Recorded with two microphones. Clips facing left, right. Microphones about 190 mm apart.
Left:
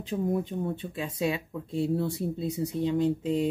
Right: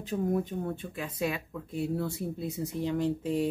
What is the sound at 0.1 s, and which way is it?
Speech, 15° left (ahead or behind).